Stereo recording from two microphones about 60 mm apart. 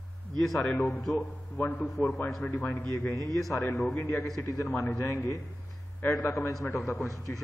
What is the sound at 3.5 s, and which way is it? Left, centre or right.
Speech, left.